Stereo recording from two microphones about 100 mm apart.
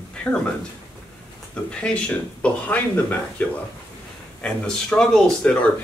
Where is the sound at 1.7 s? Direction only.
10° left (ahead or behind).